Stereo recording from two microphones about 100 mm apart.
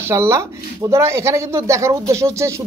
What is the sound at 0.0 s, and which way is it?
Speech, 25° right (ahead or behind).